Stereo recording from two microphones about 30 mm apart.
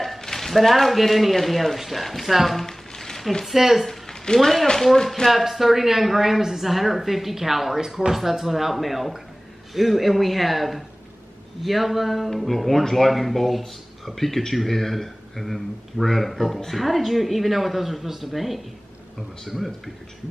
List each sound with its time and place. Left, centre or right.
0.2 s a man's voice: centre
2.6 s a sound: centre
3.5 s a woman's voice: centre
4.1 s a sound: centre
4.9 s speech: centre
5.3 s a woman's voice: centre